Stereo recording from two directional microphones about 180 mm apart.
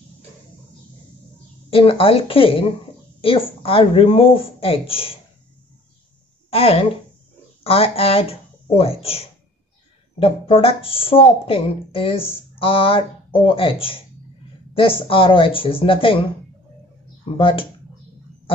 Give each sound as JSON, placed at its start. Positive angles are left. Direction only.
{"t": 1.7, "sound": "speech", "side_deg": 30}
{"t": 6.5, "sound": "speech", "side_deg": 30}
{"t": 17.4, "sound": "speech", "side_deg": 30}